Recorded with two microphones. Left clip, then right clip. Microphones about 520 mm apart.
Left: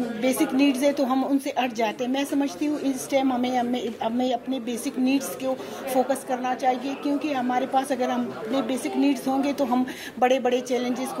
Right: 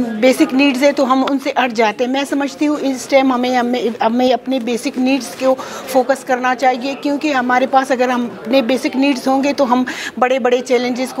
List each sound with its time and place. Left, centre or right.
0.2 s speech: right